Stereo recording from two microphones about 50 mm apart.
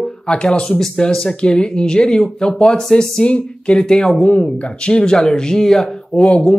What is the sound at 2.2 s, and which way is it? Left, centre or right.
Speech, centre.